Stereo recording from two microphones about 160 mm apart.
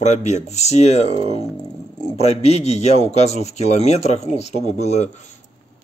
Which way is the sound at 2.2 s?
40° left (ahead or behind).